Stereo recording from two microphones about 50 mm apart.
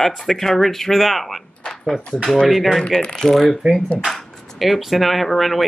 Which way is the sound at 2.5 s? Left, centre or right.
Centre.